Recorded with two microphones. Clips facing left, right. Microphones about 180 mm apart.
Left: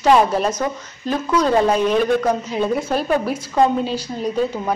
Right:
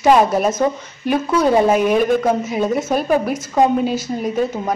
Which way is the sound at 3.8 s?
50° right (ahead or behind).